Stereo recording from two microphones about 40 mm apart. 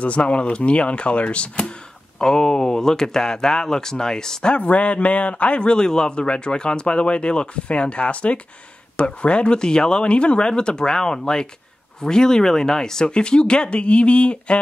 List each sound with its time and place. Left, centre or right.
0.0 s a man's voice: left
2.1 s speech: centre
4.6 s a man's voice: left